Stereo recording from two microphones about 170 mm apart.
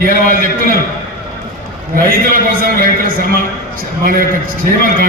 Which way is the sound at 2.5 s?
55° right (ahead or behind).